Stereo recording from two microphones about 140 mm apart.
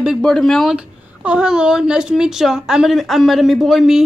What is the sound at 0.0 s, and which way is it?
Speech, centre (ahead or behind).